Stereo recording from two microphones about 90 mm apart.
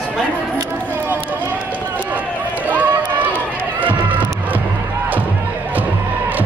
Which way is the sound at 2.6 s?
20° right (ahead or behind).